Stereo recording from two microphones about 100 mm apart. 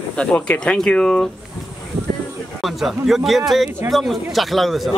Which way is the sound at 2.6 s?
Centre (ahead or behind).